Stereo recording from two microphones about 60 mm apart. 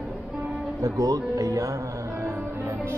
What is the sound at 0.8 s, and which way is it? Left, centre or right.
Speech, right.